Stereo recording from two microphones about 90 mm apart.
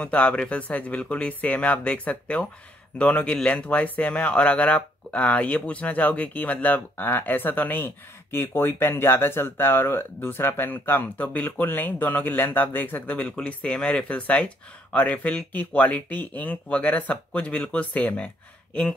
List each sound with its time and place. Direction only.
0.0 s speech: 15° left (ahead or behind)